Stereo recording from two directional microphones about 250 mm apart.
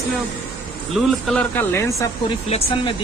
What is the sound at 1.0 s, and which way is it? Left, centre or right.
Speech, centre.